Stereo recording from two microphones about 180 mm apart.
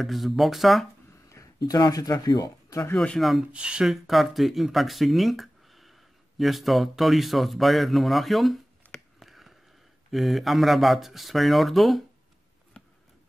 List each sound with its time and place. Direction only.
0.0 s speech: centre (ahead or behind)
1.3 s speech: 20° left (ahead or behind)
3.0 s speech: 5° left (ahead or behind)
8.8 s a sound: 10° left (ahead or behind)
10.1 s speech: centre (ahead or behind)